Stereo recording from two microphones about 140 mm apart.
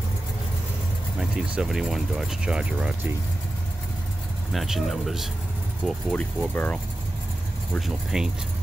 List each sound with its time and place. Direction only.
1.5 s speech: 5° right (ahead or behind)
4.5 s speech: centre (ahead or behind)
5.9 s speech: 10° left (ahead or behind)
7.7 s speech: centre (ahead or behind)